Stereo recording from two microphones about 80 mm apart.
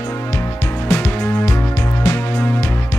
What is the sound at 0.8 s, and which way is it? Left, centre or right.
Music, left.